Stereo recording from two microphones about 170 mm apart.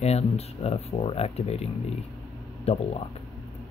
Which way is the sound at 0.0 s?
40° left (ahead or behind).